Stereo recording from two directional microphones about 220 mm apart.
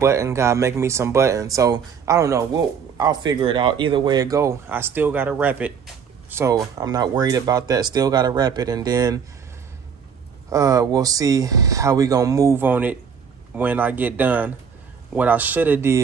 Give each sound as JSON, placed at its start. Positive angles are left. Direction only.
{"t": 0.0, "sound": "speech", "side_deg": -10}
{"t": 10.5, "sound": "speech", "side_deg": -15}